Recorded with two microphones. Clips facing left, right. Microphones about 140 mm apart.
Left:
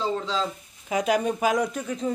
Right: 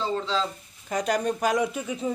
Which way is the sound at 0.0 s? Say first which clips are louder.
Even; 5° left (ahead or behind).